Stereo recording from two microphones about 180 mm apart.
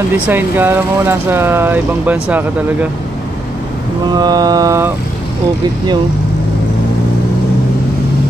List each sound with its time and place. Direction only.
0.1 s speech: 10° right (ahead or behind)
4.1 s mantra: 20° right (ahead or behind)